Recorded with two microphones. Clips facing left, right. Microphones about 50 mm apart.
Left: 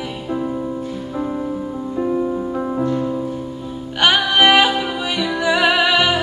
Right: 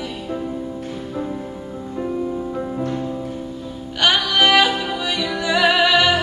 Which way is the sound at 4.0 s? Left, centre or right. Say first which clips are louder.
Left 2 dB; left.